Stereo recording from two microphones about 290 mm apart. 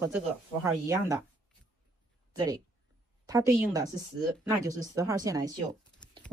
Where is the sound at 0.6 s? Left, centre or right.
Centre.